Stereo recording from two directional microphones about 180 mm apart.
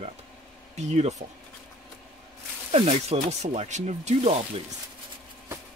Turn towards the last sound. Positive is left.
turn(degrees=-40)  # may be behind; listen again after turning